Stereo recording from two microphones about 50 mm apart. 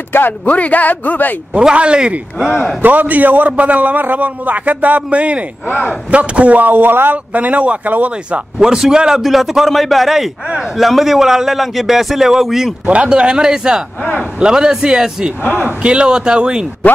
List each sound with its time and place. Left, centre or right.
0.1 s speech: left
0.5 s speech: left
1.5 s speech: centre
2.8 s a man's voice: right
5.7 s speech: left
6.1 s a man's voice: right
7.3 s a man's voice: right
8.3 s a man's voice: centre
12.8 s a man's voice: right